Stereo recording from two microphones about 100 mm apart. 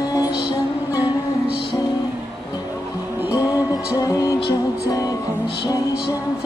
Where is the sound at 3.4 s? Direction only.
35° left (ahead or behind).